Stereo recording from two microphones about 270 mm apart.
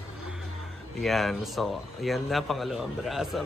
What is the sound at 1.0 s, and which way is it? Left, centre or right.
Speech, centre.